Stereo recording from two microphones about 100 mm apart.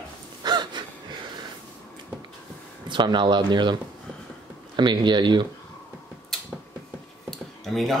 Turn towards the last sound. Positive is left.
turn(degrees=0)  # may be behind; listen again after turning